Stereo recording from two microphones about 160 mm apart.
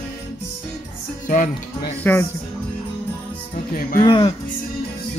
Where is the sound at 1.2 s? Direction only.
55° left (ahead or behind).